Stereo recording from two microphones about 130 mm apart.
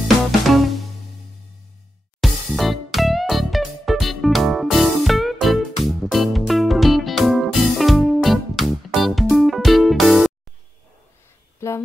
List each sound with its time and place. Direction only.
0.5 s music: centre (ahead or behind)
2.1 s music: centre (ahead or behind)
11.6 s a sound: 20° left (ahead or behind)